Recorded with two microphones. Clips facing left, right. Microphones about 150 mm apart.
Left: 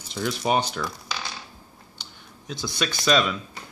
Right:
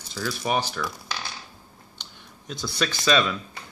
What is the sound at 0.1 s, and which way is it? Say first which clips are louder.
Speech: left 2 dB; 25° left (ahead or behind).